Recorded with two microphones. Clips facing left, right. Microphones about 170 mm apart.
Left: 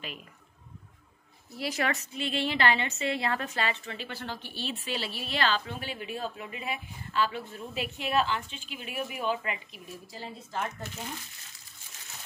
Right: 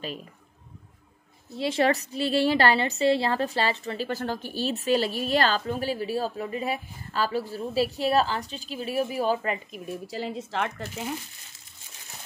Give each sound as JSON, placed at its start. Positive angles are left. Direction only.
{"t": 1.5, "sound": "a woman's voice", "side_deg": -25}
{"t": 9.8, "sound": "speech", "side_deg": -80}